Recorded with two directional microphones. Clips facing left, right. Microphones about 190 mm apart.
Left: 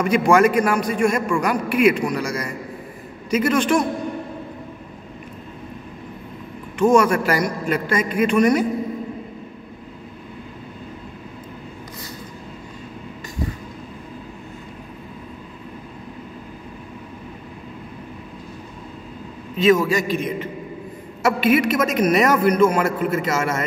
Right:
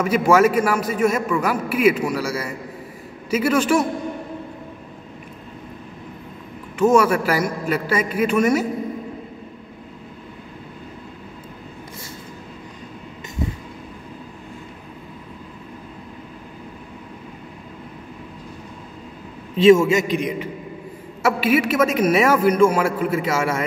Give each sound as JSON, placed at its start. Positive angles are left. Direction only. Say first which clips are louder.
{"t": 0.0, "sound": "a man's voice", "louder": "even", "side_deg": -5}
{"t": 6.8, "sound": "a man's voice", "louder": "even", "side_deg": -5}
{"t": 19.5, "sound": "a man's voice", "louder": "right 4 dB", "side_deg": -30}